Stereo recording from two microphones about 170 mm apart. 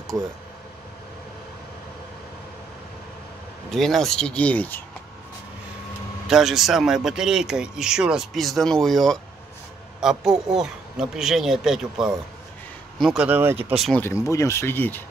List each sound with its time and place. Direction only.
3.7 s speech: centre (ahead or behind)
6.2 s speech: centre (ahead or behind)
13.8 s speech: 10° left (ahead or behind)